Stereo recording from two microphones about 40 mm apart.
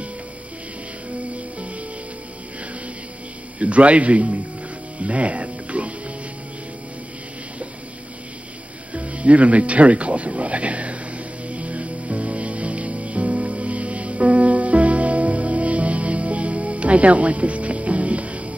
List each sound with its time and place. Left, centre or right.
3.5 s a man's voice: right
4.9 s music: right
8.9 s speech: right
11.4 s music: right